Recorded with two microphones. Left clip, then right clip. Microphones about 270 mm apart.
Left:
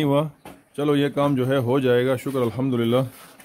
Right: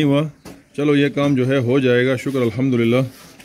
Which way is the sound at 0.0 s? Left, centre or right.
Centre.